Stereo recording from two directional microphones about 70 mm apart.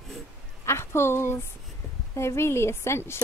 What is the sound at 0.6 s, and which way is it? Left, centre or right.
Speech, left.